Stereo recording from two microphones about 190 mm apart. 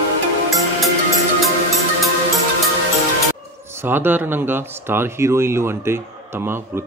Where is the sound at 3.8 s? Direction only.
10° right (ahead or behind).